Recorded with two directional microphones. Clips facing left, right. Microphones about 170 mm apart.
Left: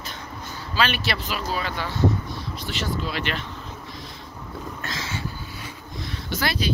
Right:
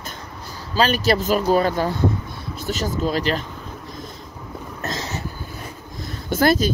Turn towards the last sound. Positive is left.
turn(degrees=-45)  # may be behind; listen again after turning